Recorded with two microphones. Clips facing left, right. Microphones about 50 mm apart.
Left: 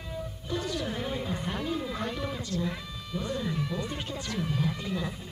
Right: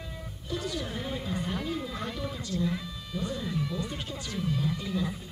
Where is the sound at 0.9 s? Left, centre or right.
Left.